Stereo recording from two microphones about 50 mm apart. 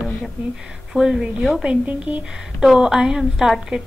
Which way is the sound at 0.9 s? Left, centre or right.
Centre.